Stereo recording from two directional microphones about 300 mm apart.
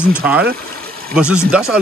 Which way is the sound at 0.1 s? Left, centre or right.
Centre.